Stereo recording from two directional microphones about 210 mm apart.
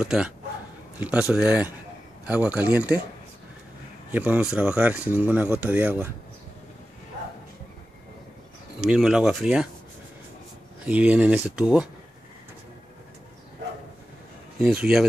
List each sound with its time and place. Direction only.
0.0 s speech: 5° right (ahead or behind)
4.1 s speech: 5° right (ahead or behind)
8.9 s speech: centre (ahead or behind)
10.9 s speech: 5° right (ahead or behind)
14.6 s speech: 5° right (ahead or behind)